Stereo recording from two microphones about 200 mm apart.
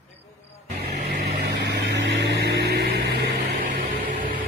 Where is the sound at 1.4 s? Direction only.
55° right (ahead or behind).